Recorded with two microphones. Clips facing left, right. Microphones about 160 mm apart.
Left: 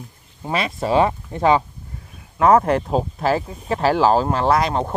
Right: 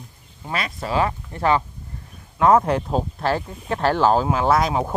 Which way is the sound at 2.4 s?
Centre (ahead or behind).